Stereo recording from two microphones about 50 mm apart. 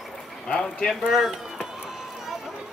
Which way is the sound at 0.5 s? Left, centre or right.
Centre.